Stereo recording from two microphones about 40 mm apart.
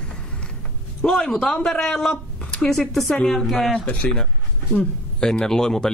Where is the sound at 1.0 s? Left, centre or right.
Left.